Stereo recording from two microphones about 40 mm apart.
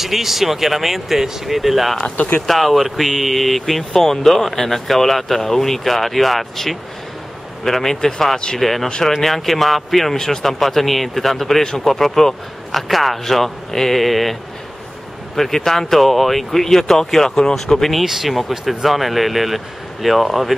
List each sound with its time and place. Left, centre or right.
0.0 s speech: centre
2.1 s speech: left
2.4 s speech: centre
10.1 s speech: centre
11.6 s speech: centre
15.3 s speech: centre
18.0 s speech: centre